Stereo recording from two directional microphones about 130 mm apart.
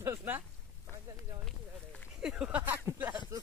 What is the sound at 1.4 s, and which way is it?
Run, 5° left (ahead or behind).